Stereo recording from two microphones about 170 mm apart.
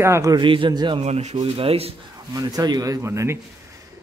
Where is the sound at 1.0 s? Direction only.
40° right (ahead or behind).